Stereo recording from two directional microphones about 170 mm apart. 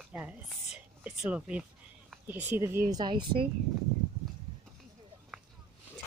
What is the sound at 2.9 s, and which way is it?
Speech, 25° right (ahead or behind).